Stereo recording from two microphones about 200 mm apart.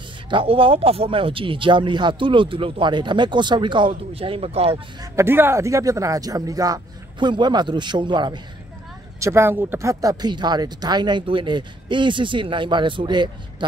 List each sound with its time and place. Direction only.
0.3 s speech: 25° right (ahead or behind)
5.0 s a man's voice: 15° right (ahead or behind)